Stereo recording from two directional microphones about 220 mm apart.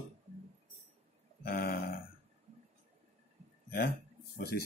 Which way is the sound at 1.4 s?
45° left (ahead or behind).